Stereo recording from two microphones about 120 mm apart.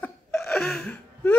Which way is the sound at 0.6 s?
5° left (ahead or behind).